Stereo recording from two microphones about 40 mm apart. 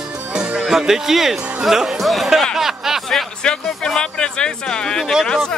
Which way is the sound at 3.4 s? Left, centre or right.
Centre.